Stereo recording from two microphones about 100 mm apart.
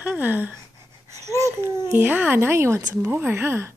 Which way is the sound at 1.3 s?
30° right (ahead or behind).